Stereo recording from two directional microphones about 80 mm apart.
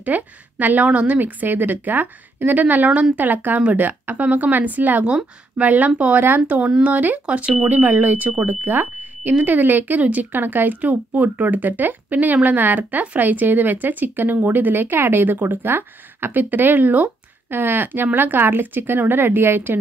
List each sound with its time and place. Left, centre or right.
0.0 s a woman's voice: right